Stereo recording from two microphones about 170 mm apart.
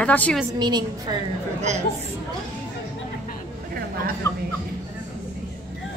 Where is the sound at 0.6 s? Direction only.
25° right (ahead or behind).